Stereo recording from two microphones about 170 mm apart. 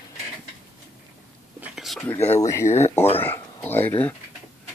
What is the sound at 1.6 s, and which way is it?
Whispering, centre (ahead or behind).